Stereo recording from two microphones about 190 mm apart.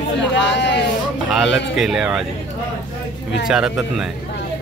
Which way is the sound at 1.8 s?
5° right (ahead or behind).